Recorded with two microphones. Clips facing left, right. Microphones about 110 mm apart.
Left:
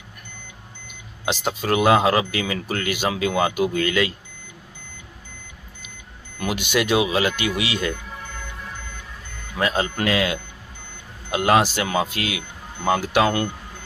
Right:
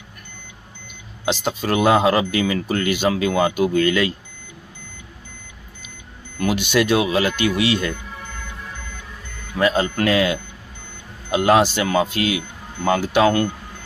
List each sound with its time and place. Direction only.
1.2 s speech: 10° left (ahead or behind)
6.4 s speech: 10° left (ahead or behind)
9.6 s speech: centre (ahead or behind)
11.3 s speech: centre (ahead or behind)